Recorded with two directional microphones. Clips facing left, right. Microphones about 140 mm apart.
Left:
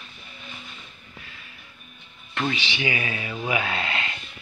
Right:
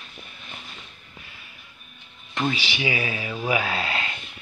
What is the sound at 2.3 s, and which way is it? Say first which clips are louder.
Speech: right 1 dB; 10° right (ahead or behind).